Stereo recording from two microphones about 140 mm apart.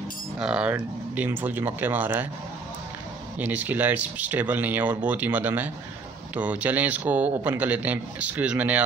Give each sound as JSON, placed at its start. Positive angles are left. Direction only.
{"t": 0.4, "sound": "a man's voice", "side_deg": -5}
{"t": 3.3, "sound": "a man's voice", "side_deg": -10}